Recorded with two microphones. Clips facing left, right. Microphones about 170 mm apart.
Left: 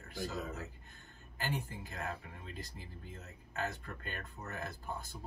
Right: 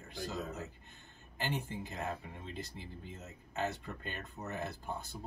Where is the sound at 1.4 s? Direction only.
20° right (ahead or behind).